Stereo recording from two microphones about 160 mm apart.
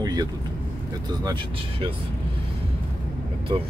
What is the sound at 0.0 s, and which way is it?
Vehicle, 25° right (ahead or behind).